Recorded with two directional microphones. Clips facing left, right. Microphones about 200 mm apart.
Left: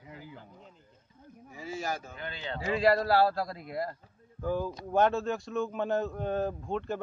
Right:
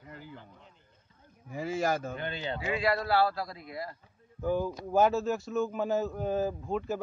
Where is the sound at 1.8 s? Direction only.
55° right (ahead or behind).